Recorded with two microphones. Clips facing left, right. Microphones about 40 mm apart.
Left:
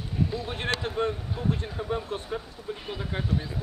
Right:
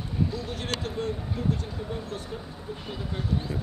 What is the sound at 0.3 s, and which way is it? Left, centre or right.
Speech, left.